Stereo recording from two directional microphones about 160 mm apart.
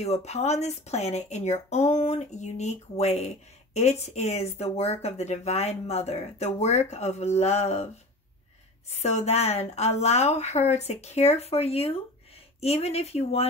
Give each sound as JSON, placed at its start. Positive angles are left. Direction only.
{"t": 0.0, "sound": "a woman's voice", "side_deg": 40}
{"t": 8.9, "sound": "a woman's voice", "side_deg": 45}